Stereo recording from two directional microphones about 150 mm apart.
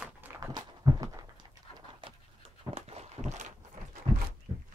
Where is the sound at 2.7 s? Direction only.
45° right (ahead or behind).